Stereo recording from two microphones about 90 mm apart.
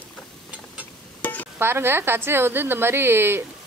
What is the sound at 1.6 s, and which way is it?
A woman's voice, 25° right (ahead or behind).